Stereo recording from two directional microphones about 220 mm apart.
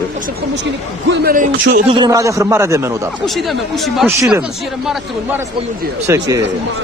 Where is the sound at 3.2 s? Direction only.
Centre (ahead or behind).